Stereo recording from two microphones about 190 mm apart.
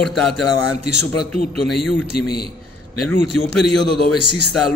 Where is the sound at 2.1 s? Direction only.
55° left (ahead or behind).